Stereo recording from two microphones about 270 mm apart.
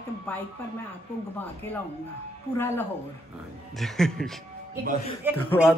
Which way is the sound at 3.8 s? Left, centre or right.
Centre.